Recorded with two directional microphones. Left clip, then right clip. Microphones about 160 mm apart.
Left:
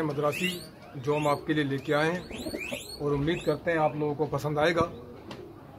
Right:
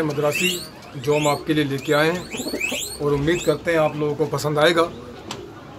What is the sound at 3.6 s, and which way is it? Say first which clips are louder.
Speech: right 7 dB; 15° left (ahead or behind).